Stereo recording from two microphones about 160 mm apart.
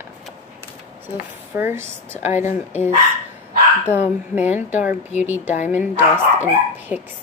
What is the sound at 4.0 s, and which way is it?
Speech, 10° right (ahead or behind).